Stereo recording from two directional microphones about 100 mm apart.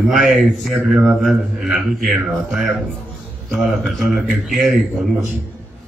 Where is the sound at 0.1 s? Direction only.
Centre (ahead or behind).